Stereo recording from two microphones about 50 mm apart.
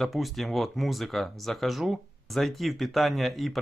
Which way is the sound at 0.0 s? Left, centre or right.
Centre.